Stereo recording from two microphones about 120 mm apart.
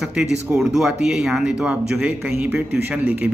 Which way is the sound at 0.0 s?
5° right (ahead or behind).